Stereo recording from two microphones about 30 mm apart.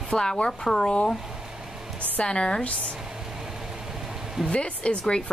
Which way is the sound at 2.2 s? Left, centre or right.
Left.